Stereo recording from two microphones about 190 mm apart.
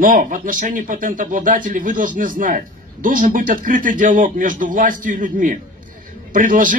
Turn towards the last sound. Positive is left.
turn(degrees=-45)  # may be behind; listen again after turning